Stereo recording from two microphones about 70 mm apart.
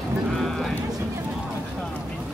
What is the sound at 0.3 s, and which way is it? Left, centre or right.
Sheep, centre.